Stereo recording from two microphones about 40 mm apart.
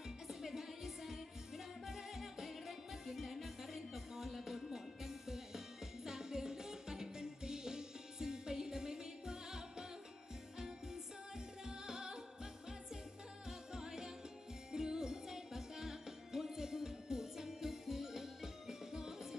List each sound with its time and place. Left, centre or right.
0.3 s music: centre
13.5 s music: centre